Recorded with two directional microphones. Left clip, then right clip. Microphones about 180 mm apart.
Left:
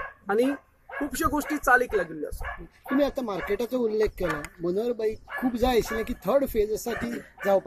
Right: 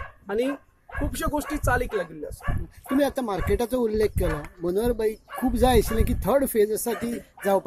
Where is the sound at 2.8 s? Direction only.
50° right (ahead or behind).